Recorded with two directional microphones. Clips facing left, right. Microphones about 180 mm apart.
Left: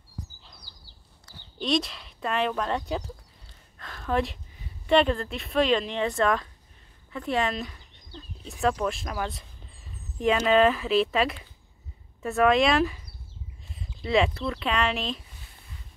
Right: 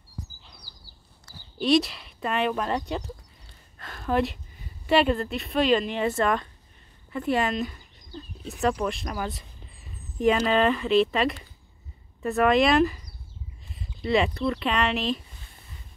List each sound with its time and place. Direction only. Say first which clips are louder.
0.4 s chirp: right 1 dB; centre (ahead or behind)
1.6 s speech: right 5 dB; 5° right (ahead or behind)
3.7 s a sound: right 2 dB; 5° right (ahead or behind)
4.8 s speech: even; 5° right (ahead or behind)